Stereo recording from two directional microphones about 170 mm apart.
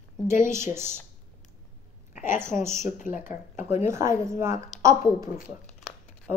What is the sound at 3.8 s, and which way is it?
Speech, 15° right (ahead or behind).